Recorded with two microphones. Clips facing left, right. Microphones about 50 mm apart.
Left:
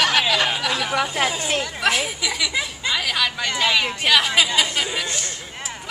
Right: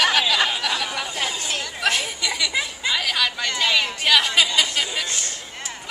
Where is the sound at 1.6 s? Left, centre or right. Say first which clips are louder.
Even; centre.